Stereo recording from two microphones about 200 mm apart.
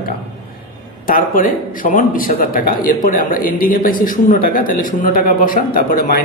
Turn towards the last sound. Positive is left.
turn(degrees=45)  # may be behind; listen again after turning